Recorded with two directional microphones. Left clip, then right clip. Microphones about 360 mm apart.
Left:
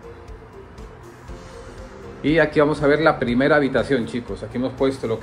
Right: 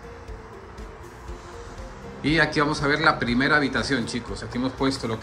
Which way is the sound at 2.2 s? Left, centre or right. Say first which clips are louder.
Left 4 dB; centre.